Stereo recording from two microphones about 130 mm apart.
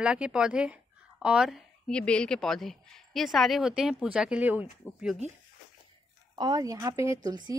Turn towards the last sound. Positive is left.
turn(degrees=-35)  # may be behind; listen again after turning